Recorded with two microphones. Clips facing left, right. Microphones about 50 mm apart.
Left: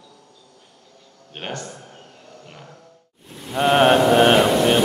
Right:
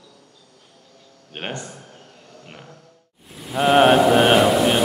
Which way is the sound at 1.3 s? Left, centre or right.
Right.